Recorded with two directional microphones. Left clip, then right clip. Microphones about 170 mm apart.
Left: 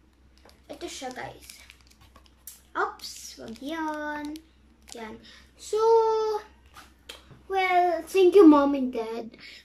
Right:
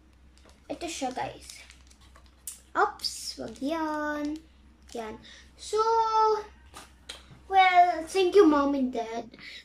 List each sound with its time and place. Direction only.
0.7 s speech: 10° right (ahead or behind)
1.5 s a sound: 5° left (ahead or behind)
2.7 s a child's voice: 5° right (ahead or behind)
5.6 s child singing: 20° left (ahead or behind)
7.1 s a child's voice: 10° left (ahead or behind)
8.9 s a child's voice: 5° left (ahead or behind)